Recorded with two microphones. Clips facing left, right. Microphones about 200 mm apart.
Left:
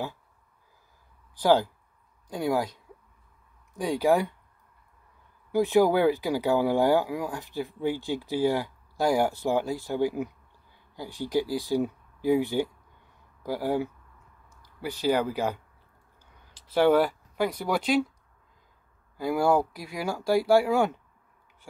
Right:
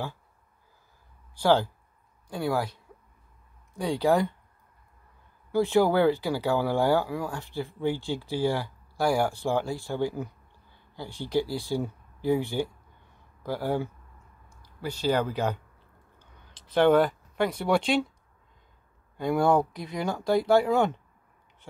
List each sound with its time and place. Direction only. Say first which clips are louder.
1.4 s speech: left 1 dB; 15° left (ahead or behind)
5.5 s speech: left 1 dB; 15° left (ahead or behind)
16.5 s speech: right 1 dB; 5° left (ahead or behind)
19.1 s speech: right 1 dB; 5° left (ahead or behind)